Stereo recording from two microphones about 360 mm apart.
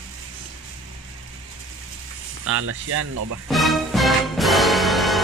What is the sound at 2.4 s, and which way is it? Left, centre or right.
Speech, right.